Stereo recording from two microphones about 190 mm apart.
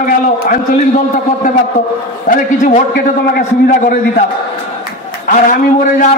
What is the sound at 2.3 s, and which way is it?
Speech, 40° left (ahead or behind).